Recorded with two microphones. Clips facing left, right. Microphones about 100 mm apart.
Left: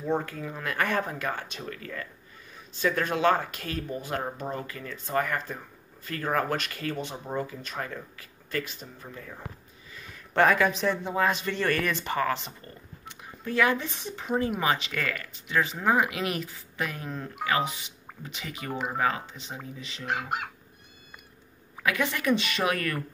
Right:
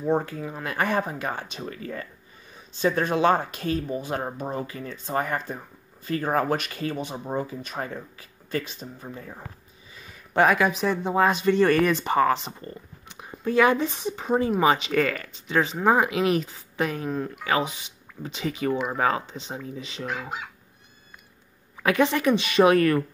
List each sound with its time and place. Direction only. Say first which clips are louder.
0.1 s speech: right 4 dB; 20° right (ahead or behind)
9.9 s speech: right 2 dB; 15° right (ahead or behind)
20.1 s speech: left 3 dB; 65° left (ahead or behind)
21.8 s speech: right 6 dB; 25° right (ahead or behind)